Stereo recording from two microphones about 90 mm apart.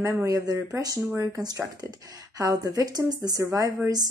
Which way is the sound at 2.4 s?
45° right (ahead or behind).